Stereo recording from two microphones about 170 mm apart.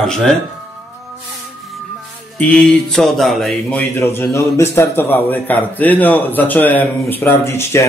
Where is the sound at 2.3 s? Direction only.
5° left (ahead or behind).